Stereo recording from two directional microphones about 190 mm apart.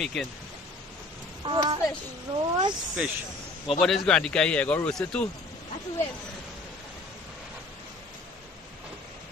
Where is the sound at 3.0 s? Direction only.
5° right (ahead or behind).